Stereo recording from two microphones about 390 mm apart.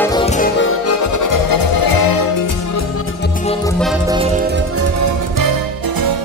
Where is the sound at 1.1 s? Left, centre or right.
Left.